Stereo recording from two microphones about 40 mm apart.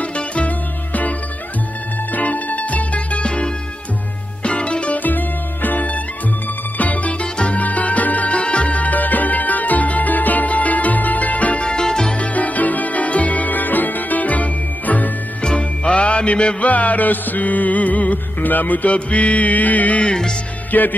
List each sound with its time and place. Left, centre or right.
2.1 s music: left
5.0 s music: left
8.4 s music: left
11.6 s music: left
12.2 s music: left
15.4 s music: left
18.9 s mantra: left
20.7 s music: left